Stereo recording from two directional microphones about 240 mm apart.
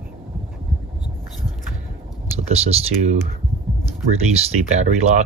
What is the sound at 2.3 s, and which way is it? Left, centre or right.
Speech, right.